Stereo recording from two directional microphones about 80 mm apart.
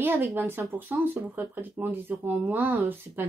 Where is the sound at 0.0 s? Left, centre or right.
Right.